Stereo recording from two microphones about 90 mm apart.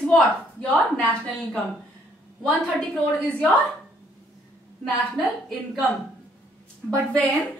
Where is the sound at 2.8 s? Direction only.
10° left (ahead or behind).